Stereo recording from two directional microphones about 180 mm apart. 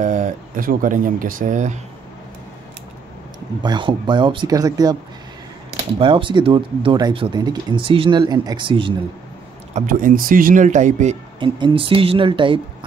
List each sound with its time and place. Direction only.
0.0 s speech: 45° right (ahead or behind)
3.6 s speech: 25° right (ahead or behind)
5.9 s speech: 30° right (ahead or behind)
9.8 s speech: 50° right (ahead or behind)
11.3 s speech: 25° right (ahead or behind)